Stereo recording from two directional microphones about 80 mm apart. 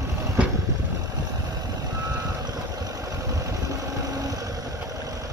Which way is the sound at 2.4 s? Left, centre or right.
Right.